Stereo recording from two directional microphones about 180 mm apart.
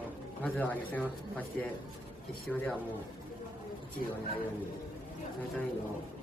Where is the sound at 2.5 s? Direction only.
5° left (ahead or behind).